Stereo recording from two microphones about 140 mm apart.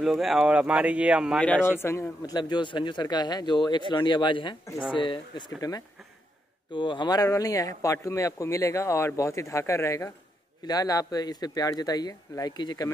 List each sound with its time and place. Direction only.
0.0 s speech: centre (ahead or behind)
1.4 s a man's voice: 15° left (ahead or behind); by 12.9 s 30° left (ahead or behind)